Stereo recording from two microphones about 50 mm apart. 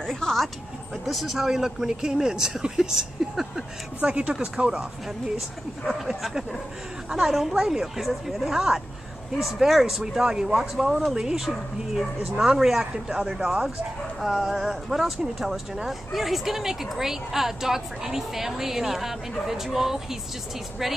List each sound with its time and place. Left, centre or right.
0.0 s dog: centre
1.0 s speech: centre
4.0 s speech: right
5.9 s speech: centre